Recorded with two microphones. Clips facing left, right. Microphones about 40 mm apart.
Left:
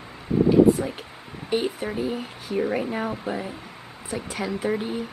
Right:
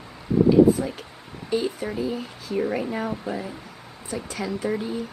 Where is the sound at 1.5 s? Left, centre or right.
Left.